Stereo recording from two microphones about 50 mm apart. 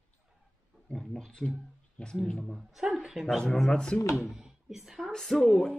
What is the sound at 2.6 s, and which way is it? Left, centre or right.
Speech, centre.